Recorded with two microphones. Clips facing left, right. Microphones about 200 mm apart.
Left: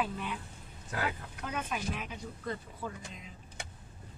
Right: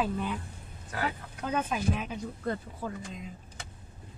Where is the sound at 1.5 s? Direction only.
45° right (ahead or behind).